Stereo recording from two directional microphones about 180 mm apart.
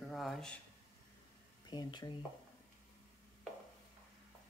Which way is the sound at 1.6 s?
25° left (ahead or behind).